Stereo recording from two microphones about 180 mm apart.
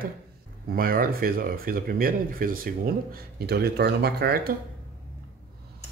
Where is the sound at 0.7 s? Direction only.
55° right (ahead or behind).